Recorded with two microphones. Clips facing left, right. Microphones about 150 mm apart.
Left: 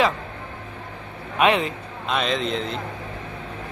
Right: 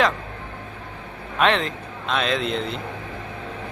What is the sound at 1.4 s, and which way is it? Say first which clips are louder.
A man's voice: left 1 dB; 10° left (ahead or behind).